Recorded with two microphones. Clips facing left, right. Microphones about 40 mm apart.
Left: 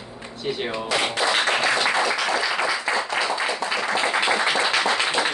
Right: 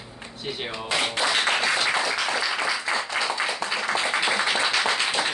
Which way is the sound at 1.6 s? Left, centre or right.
Centre.